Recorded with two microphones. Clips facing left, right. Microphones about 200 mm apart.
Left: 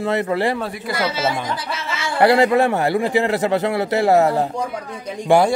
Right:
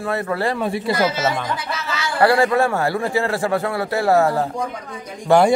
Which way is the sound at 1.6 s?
25° left (ahead or behind).